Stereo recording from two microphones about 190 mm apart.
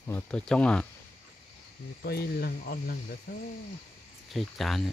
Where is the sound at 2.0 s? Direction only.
55° left (ahead or behind).